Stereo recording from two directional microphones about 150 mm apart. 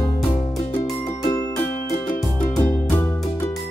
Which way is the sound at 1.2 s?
25° left (ahead or behind).